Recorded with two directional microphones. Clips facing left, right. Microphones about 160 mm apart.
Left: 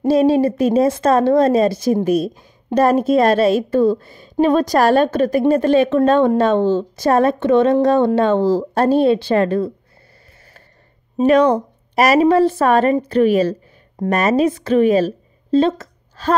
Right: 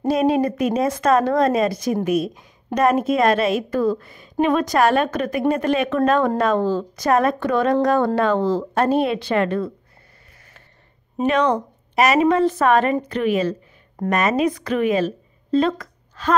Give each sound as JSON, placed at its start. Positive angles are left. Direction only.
{"t": 0.1, "sound": "a woman's voice", "side_deg": 30}
{"t": 11.2, "sound": "a woman's voice", "side_deg": 35}